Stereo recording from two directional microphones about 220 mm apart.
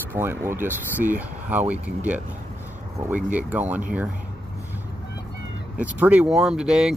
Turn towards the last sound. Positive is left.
turn(degrees=0)  # may be behind; listen again after turning